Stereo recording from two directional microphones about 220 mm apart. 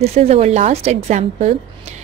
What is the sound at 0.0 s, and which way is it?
A woman's voice, 30° right (ahead or behind).